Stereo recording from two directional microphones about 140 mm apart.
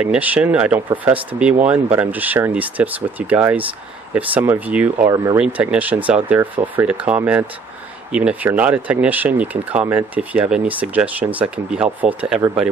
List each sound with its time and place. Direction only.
0.0 s speech: 10° right (ahead or behind)
5.1 s speech: 20° right (ahead or behind)
5.4 s speech: 10° right (ahead or behind)